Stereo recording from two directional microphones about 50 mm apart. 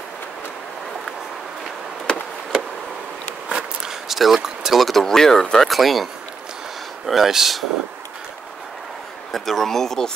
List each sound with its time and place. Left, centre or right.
2.1 s chop: centre
3.4 s walk: centre
4.1 s speech: centre
4.8 s speech: centre
7.1 s speech: centre
9.3 s speech: centre